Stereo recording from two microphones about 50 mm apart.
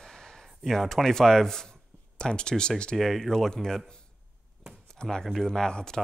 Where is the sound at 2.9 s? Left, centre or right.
Centre.